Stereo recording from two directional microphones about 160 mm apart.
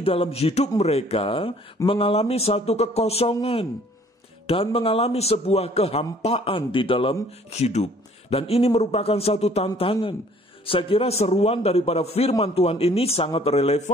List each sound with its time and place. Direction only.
0.0 s a man's voice: 35° left (ahead or behind)